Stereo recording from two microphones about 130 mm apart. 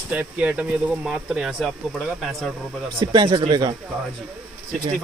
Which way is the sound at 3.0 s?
35° right (ahead or behind).